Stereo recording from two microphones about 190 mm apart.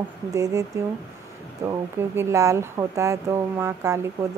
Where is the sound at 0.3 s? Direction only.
15° right (ahead or behind).